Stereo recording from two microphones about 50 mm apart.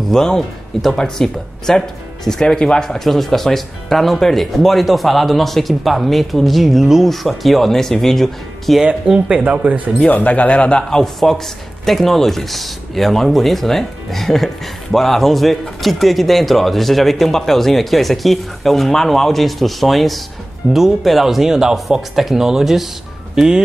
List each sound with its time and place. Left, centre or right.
0.1 s speech: centre
9.3 s speech: right
9.9 s speech: left; by 23.6 s centre